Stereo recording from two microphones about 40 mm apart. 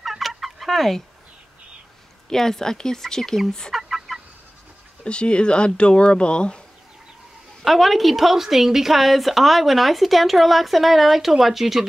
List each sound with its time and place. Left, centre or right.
0.0 s fowl: centre
2.2 s speech: centre
3.7 s fowl: centre
5.0 s speech: left
7.6 s a woman's voice: centre